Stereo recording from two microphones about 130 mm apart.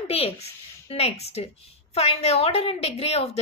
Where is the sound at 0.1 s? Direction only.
50° left (ahead or behind).